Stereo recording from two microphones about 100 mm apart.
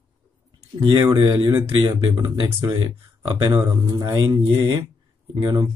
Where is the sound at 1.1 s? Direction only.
50° right (ahead or behind).